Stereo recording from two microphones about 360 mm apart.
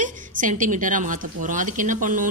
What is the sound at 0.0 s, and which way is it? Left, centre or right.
A woman's voice, right.